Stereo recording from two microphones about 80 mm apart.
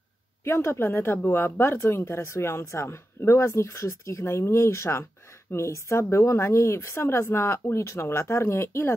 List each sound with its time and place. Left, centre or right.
0.4 s speech: left